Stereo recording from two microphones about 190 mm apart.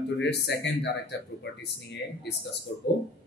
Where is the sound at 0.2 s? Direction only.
65° left (ahead or behind).